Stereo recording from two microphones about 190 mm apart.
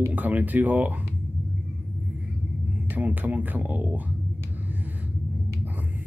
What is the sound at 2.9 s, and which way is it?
Speech, 10° right (ahead or behind).